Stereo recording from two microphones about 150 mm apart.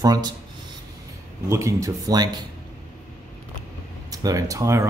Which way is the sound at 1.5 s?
20° right (ahead or behind).